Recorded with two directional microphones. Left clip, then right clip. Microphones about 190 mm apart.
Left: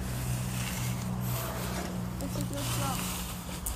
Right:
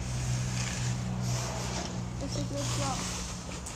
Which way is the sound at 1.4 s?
50° left (ahead or behind).